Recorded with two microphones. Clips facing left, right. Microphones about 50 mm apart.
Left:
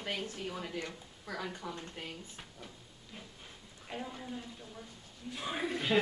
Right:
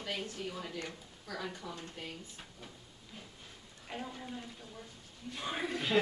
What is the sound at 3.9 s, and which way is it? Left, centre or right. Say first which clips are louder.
A woman's voice: left 1 dB; centre.